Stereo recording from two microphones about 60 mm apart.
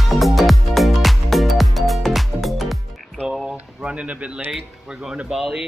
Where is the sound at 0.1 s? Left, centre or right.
Centre.